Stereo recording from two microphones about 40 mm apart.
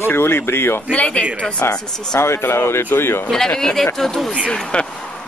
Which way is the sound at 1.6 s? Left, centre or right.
Left.